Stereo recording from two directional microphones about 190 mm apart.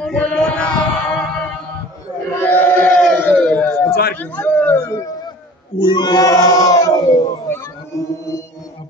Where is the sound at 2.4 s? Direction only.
10° left (ahead or behind).